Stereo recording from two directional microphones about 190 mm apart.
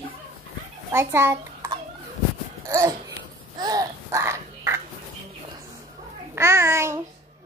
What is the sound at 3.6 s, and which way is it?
Babbling, 20° right (ahead or behind).